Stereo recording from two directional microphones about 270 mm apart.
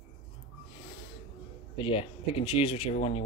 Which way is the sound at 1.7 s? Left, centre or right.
Centre.